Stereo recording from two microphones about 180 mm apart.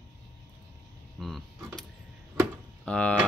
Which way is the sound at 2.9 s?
5° left (ahead or behind).